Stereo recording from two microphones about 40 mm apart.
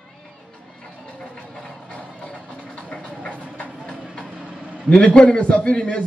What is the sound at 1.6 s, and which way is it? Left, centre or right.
Music, left.